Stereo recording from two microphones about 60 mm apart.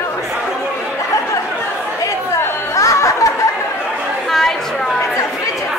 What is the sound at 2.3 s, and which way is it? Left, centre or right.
Chatter, left.